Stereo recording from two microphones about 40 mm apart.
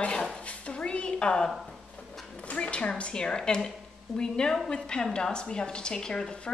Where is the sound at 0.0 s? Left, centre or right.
Left.